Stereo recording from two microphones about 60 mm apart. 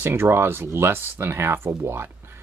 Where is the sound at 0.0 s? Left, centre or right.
Right.